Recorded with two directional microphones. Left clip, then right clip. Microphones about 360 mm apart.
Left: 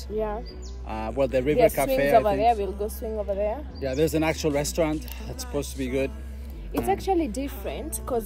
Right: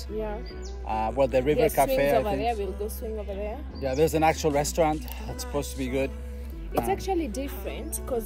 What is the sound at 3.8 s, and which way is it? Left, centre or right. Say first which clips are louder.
Speech: right 2 dB; centre.